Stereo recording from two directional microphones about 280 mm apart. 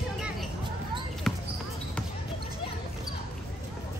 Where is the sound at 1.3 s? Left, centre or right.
Centre.